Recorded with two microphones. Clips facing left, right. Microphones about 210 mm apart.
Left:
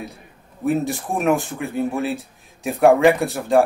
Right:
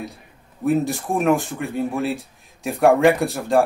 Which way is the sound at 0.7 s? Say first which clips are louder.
Right 1 dB; centre (ahead or behind).